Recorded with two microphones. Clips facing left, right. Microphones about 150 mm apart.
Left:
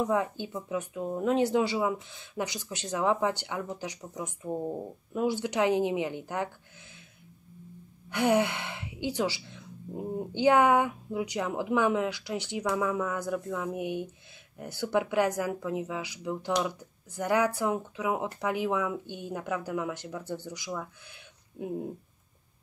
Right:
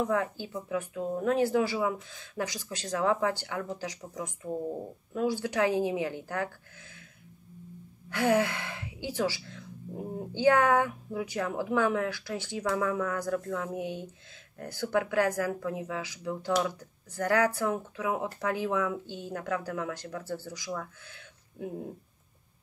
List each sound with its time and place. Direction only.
0.0 s speech: 20° left (ahead or behind)
8.1 s speech: 20° left (ahead or behind)